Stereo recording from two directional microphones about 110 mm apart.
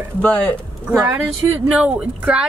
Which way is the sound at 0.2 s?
15° left (ahead or behind).